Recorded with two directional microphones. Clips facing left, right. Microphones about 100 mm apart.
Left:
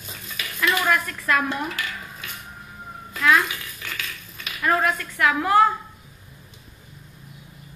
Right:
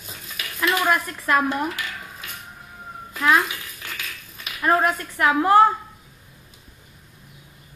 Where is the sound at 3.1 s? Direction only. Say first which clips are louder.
Even; 35° right (ahead or behind).